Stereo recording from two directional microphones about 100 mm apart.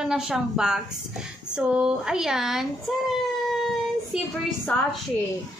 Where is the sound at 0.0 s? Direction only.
5° right (ahead or behind).